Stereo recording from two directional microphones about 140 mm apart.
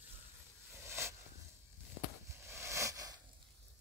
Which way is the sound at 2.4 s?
20° right (ahead or behind).